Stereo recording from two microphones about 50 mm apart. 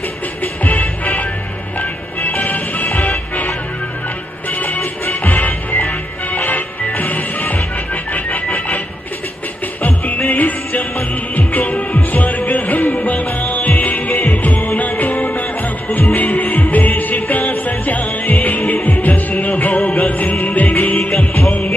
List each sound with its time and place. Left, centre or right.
0.4 s music: left
9.8 s music: left